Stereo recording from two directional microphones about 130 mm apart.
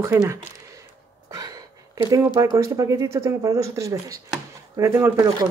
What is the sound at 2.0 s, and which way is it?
Speech, 25° right (ahead or behind).